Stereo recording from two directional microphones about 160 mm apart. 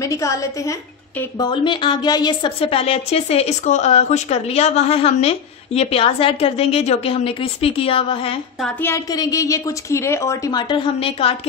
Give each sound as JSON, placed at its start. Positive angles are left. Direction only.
{"t": 0.0, "sound": "a woman's voice", "side_deg": 20}
{"t": 8.8, "sound": "a woman's voice", "side_deg": 20}